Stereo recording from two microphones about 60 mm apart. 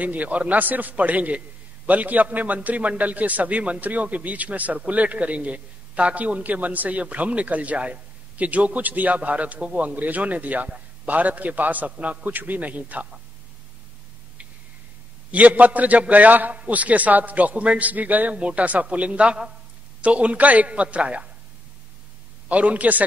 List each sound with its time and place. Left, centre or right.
0.0 s a man's voice: right
15.3 s a man's voice: right
22.5 s a man's voice: right